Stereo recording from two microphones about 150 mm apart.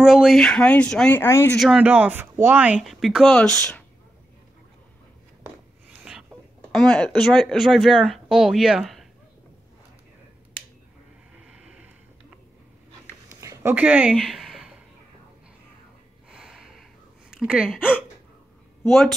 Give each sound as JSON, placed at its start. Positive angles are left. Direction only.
{"t": 0.0, "sound": "speech", "side_deg": -5}
{"t": 1.2, "sound": "speech", "side_deg": 15}
{"t": 1.6, "sound": "speech", "side_deg": -5}
{"t": 5.4, "sound": "a sound", "side_deg": -5}
{"t": 6.7, "sound": "speech", "side_deg": 5}
{"t": 11.4, "sound": "a sound", "side_deg": -5}
{"t": 13.3, "sound": "a sound", "side_deg": -20}
{"t": 16.3, "sound": "snort", "side_deg": -5}
{"t": 17.3, "sound": "speech", "side_deg": -5}
{"t": 18.9, "sound": "speech", "side_deg": 0}